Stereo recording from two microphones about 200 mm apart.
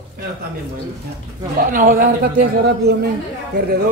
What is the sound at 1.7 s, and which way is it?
Speech, 45° right (ahead or behind).